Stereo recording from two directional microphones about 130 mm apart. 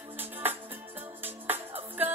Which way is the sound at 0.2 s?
15° right (ahead or behind).